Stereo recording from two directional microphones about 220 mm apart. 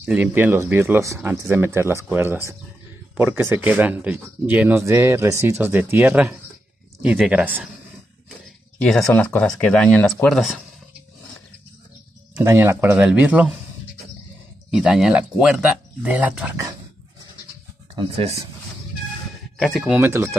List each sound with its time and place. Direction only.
0.0 s speech: 5° right (ahead or behind)
8.8 s speech: centre (ahead or behind)
12.4 s speech: 10° right (ahead or behind)
14.7 s speech: centre (ahead or behind)
17.9 s speech: 25° right (ahead or behind)
19.6 s speech: centre (ahead or behind)
20.0 s speech: 10° right (ahead or behind)